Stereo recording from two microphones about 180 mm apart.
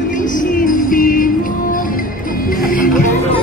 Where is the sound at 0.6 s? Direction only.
50° left (ahead or behind).